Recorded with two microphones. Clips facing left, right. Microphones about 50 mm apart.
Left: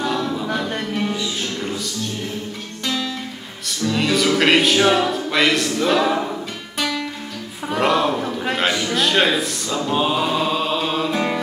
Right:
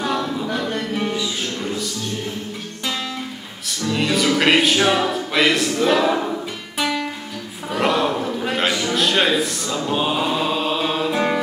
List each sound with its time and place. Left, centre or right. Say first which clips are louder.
0.0 s a capella: even; centre
0.3 s a capella: even; centre
3.8 s speech: left 1 dB; centre
6.8 s guitar: right 1 dB; centre
7.7 s a sound: left 1 dB; centre
8.9 s music: even; centre